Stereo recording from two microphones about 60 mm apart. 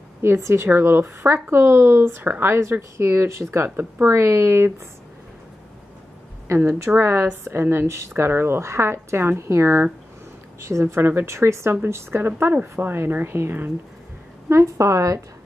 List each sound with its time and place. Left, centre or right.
0.2 s speech: right
6.5 s a woman's voice: right
8.1 s speech: right
14.5 s a woman's voice: right